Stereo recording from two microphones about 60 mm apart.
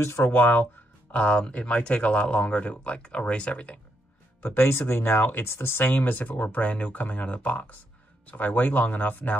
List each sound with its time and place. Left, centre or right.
0.0 s speech: left
0.3 s speech: left
1.1 s speech: centre
4.4 s speech: left